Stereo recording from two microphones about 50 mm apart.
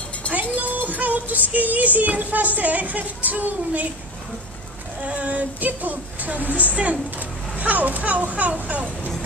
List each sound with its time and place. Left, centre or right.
0.2 s music: left
0.6 s music: right
5.0 s music: right